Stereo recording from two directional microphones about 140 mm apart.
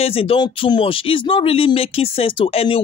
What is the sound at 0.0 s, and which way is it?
Speech, 40° left (ahead or behind).